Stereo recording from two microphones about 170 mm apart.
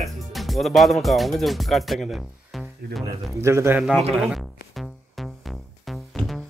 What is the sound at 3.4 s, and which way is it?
Speech, 15° right (ahead or behind).